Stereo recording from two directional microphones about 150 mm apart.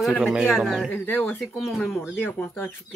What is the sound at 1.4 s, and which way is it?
Speech, centre (ahead or behind).